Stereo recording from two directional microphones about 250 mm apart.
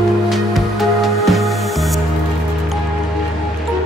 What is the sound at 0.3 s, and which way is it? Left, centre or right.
Music, centre.